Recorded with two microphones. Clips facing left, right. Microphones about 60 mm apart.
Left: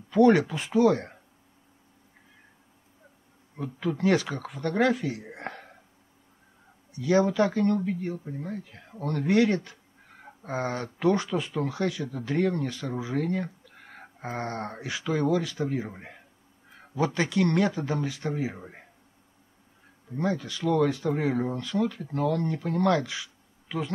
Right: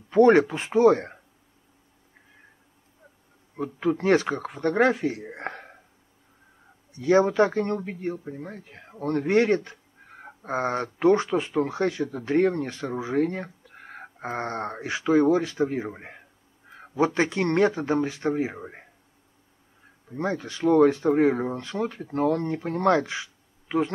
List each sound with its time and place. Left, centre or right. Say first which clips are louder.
0.1 s speech: right 3 dB; right
3.5 s speech: right 5 dB; right
6.9 s speech: right 3 dB; right
12.9 s a sound: right 5 dB; right
14.0 s speech: right 3 dB; right
20.2 s speech: right 1 dB; right